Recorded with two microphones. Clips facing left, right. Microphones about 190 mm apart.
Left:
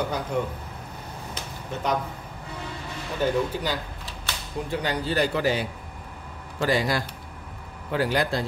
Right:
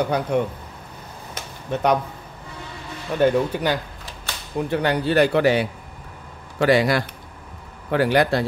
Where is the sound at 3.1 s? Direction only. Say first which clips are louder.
Right 6 dB; 65° right (ahead or behind).